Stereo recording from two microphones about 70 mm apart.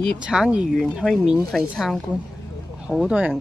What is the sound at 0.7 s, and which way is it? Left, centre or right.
Speech, centre.